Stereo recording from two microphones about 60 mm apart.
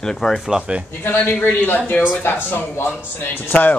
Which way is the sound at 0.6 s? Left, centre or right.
Centre.